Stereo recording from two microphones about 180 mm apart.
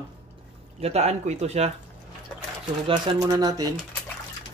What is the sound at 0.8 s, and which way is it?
Coin, 35° right (ahead or behind).